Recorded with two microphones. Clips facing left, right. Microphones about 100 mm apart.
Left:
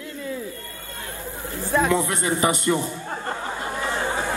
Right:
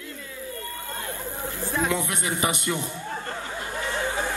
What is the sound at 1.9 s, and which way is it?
A man's voice, 30° left (ahead or behind).